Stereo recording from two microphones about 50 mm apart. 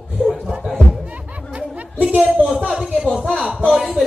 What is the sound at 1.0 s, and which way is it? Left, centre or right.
Music, right.